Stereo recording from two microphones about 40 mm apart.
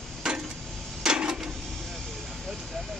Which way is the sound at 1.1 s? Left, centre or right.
Right.